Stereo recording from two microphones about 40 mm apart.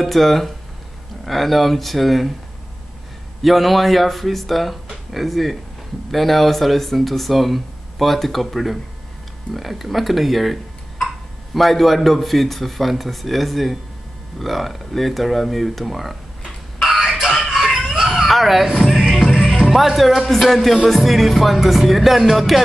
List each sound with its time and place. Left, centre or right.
0.0 s speech: centre
3.4 s speech: centre
17.5 s a sound: centre
19.0 s music: centre
19.7 s speech: centre
20.2 s speech: centre